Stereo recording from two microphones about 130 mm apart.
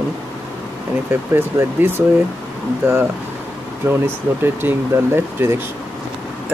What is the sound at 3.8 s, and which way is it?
Speech, 20° right (ahead or behind).